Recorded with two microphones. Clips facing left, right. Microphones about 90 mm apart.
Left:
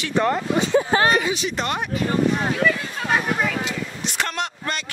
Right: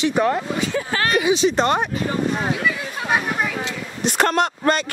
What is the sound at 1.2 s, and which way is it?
Speech, 15° right (ahead or behind).